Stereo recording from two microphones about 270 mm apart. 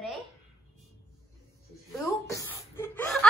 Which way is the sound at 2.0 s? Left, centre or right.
Centre.